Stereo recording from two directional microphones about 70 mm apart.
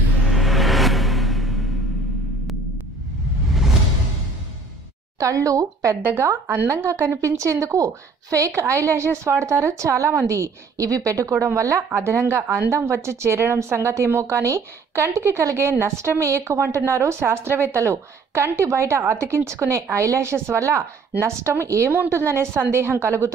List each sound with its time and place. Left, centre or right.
0.4 s music: centre
5.2 s a woman's voice: right
6.5 s a woman's voice: right